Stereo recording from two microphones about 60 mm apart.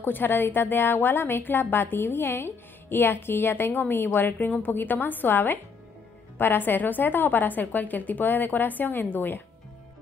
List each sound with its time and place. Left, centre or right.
0.0 s a woman's voice: left